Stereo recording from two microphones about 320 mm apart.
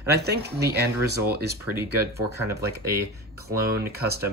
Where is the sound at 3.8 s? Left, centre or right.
Right.